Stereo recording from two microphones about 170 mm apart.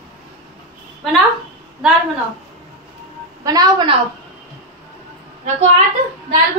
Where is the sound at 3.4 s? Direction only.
20° right (ahead or behind).